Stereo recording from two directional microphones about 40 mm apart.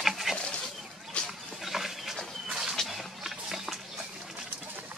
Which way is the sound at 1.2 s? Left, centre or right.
Left.